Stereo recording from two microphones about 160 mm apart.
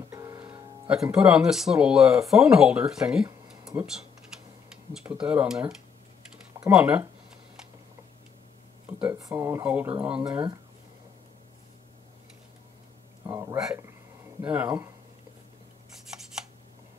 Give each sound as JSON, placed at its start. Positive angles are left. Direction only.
{"t": 0.1, "sound": "music", "side_deg": -20}
{"t": 1.1, "sound": "speech", "side_deg": -5}
{"t": 3.4, "sound": "a sound", "side_deg": -5}
{"t": 5.2, "sound": "speech", "side_deg": -10}
{"t": 9.0, "sound": "speech", "side_deg": -15}
{"t": 13.3, "sound": "a sound", "side_deg": -15}
{"t": 14.4, "sound": "speech", "side_deg": -10}